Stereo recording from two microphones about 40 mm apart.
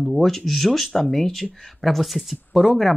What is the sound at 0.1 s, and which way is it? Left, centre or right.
Speech, centre.